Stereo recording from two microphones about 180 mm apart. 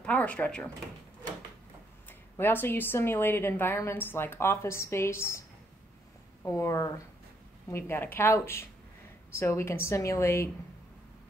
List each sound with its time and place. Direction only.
0.0 s speech: 5° left (ahead or behind)
2.0 s speech: 10° left (ahead or behind)
6.4 s speech: 15° left (ahead or behind)